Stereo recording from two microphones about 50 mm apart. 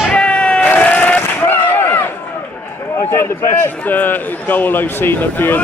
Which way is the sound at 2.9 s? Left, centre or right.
Left.